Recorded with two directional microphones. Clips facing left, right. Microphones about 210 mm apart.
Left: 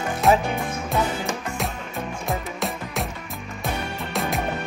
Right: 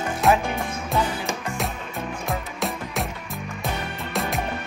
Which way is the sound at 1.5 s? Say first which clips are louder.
Even; centre (ahead or behind).